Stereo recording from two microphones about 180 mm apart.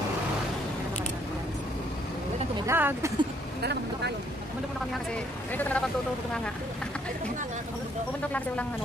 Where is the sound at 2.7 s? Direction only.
15° right (ahead or behind).